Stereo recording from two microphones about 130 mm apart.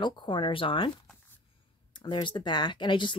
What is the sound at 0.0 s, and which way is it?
Speech, 40° left (ahead or behind).